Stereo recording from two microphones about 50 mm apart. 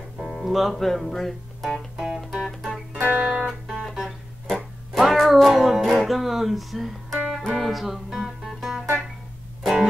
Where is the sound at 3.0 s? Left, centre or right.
Right.